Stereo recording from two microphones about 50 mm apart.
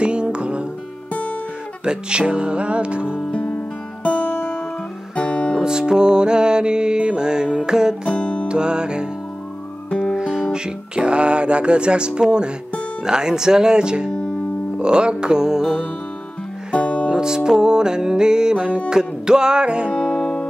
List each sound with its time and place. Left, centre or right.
0.0 s music: right
1.9 s speech: centre
3.3 s music: left
5.6 s music: centre
8.1 s music: left
8.5 s music: centre
9.8 s music: left
10.1 s music: centre
16.7 s music: left
17.1 s music: centre
19.9 s music: left